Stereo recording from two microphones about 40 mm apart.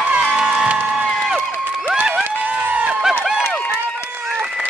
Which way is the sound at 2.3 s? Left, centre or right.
Right.